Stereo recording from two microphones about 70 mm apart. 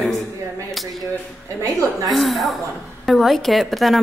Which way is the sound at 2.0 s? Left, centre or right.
Centre.